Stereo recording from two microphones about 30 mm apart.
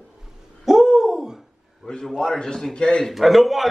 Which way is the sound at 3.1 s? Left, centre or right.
Centre.